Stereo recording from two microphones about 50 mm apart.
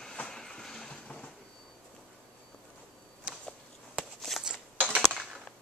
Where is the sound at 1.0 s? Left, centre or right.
Centre.